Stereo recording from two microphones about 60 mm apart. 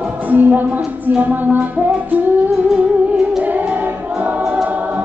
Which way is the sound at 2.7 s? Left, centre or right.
Centre.